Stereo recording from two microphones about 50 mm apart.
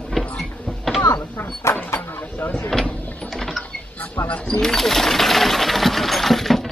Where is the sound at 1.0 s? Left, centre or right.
Left.